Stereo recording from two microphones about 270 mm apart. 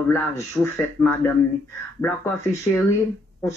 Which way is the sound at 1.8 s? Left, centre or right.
Centre.